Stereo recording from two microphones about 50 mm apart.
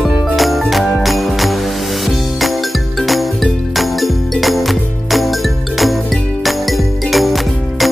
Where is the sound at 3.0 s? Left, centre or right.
Centre.